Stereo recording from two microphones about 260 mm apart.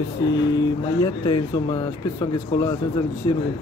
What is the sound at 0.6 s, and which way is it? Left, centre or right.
Speech, centre.